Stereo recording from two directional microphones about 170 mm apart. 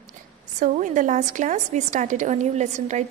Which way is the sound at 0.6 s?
50° right (ahead or behind).